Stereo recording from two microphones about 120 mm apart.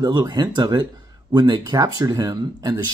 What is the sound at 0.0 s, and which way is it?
Speech, 35° right (ahead or behind).